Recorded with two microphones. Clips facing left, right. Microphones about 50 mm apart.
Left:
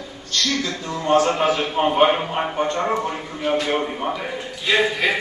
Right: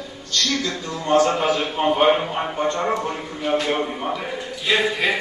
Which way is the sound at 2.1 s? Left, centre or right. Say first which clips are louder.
Right 2 dB; centre.